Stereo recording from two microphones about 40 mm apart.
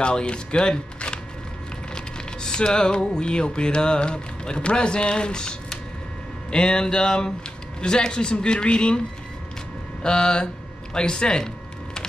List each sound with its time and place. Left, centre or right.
0.0 s speech: left
2.0 s typing: centre
6.5 s speech: left
10.0 s a sound: left